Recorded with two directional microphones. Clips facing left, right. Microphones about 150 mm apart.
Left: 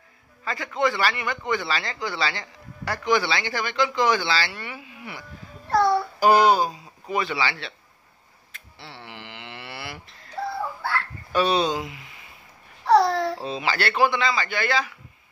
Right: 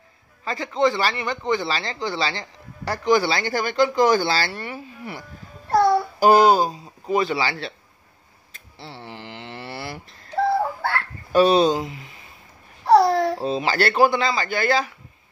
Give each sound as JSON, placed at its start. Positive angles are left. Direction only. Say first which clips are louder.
{"t": 0.5, "sound": "speech", "louder": "right 4 dB", "side_deg": -30}
{"t": 5.7, "sound": "child singing", "louder": "right 3 dB", "side_deg": -15}
{"t": 6.5, "sound": "speech", "louder": "right 3 dB", "side_deg": -40}
{"t": 8.7, "sound": "a sound", "louder": "right 4 dB", "side_deg": -35}
{"t": 10.8, "sound": "fowl", "louder": "right 3 dB", "side_deg": -60}
{"t": 11.3, "sound": "speech", "louder": "right 6 dB", "side_deg": -40}
{"t": 12.8, "sound": "babbling", "louder": "right 3 dB", "side_deg": -10}
{"t": 13.4, "sound": "speech", "louder": "right 5 dB", "side_deg": -40}